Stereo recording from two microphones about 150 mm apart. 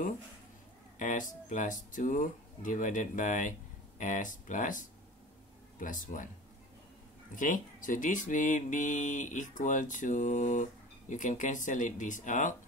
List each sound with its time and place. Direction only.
0.9 s speech: 60° left (ahead or behind)
7.3 s speech: 60° left (ahead or behind)